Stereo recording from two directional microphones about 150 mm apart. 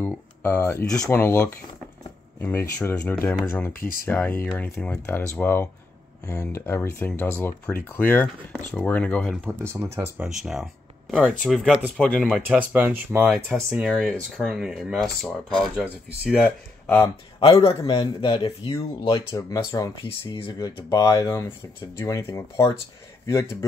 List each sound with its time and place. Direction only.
0.0 s speech: 15° left (ahead or behind)
9.5 s speech: 15° right (ahead or behind)
10.2 s speech: 5° right (ahead or behind)
12.4 s speech: 10° right (ahead or behind); by 17.1 s 10° left (ahead or behind)
17.6 s speech: 35° left (ahead or behind)
20.1 s speech: 40° left (ahead or behind)
20.5 s speech: 25° left (ahead or behind)